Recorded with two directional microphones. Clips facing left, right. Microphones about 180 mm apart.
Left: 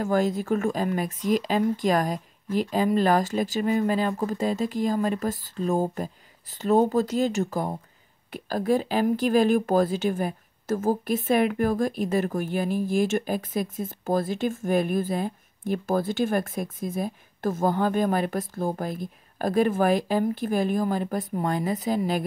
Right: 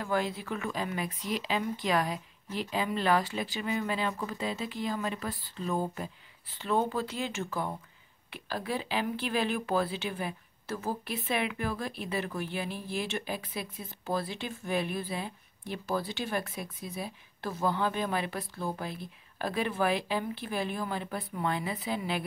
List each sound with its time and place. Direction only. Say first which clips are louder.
0.0 s speech: left 8 dB; 45° left (ahead or behind)